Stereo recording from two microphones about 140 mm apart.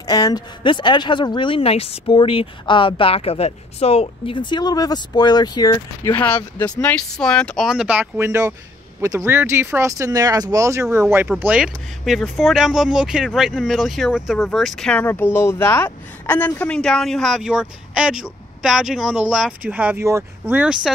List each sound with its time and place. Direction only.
0.0 s speech: 25° left (ahead or behind); by 20.9 s 5° right (ahead or behind)